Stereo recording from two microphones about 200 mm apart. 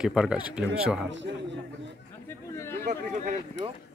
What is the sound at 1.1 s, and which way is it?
Speech, 65° right (ahead or behind).